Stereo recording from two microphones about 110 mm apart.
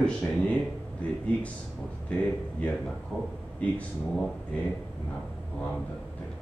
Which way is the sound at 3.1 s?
5° right (ahead or behind).